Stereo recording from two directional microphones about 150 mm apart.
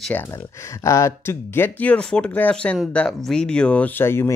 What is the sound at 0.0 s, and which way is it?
Speech, 10° left (ahead or behind).